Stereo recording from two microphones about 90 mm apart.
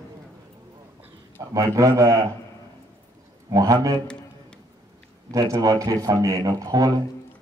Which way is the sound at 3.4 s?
40° right (ahead or behind).